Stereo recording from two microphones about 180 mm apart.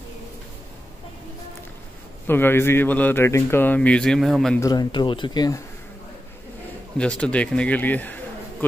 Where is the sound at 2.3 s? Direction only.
10° left (ahead or behind).